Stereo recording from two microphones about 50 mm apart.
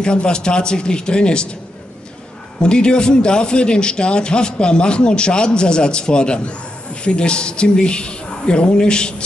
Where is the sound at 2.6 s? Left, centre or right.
Centre.